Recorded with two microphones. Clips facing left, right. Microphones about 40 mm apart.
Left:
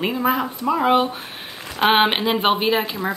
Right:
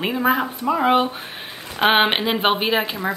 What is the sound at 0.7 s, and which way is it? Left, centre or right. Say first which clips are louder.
Speech: even; centre.